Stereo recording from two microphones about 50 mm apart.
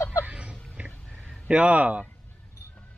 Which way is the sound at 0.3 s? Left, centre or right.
Right.